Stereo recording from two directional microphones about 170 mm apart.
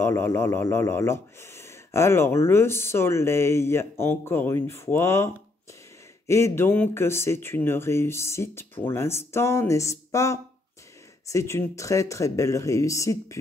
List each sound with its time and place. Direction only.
0.0 s speech: 15° left (ahead or behind)